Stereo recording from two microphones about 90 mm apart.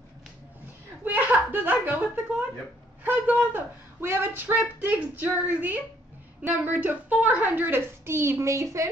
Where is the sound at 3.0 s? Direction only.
20° right (ahead or behind).